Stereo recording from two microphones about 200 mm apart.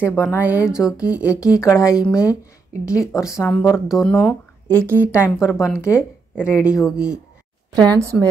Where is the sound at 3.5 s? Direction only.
5° left (ahead or behind).